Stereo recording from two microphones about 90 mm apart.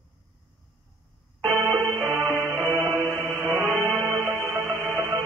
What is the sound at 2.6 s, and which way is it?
Music, 30° right (ahead or behind).